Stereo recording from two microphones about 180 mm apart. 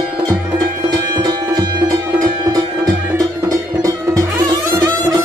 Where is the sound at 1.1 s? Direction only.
20° right (ahead or behind).